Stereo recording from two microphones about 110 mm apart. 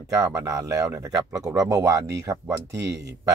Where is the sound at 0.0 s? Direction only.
30° right (ahead or behind).